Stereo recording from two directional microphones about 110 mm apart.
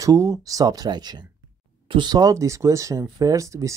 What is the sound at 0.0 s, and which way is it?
Speech, 30° right (ahead or behind).